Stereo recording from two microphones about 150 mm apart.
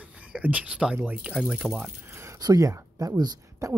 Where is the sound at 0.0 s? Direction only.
10° right (ahead or behind).